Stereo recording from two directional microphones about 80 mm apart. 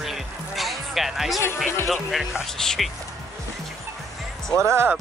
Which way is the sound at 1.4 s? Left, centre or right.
Left.